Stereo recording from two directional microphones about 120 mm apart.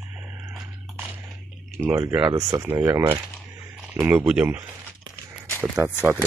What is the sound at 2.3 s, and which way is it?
Speech, 20° right (ahead or behind).